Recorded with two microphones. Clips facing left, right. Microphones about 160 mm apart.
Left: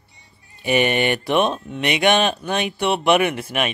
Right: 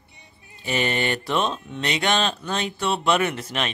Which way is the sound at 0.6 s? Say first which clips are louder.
Left 6 dB; 15° left (ahead or behind).